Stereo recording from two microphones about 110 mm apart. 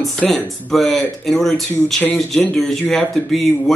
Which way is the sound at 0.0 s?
5° left (ahead or behind).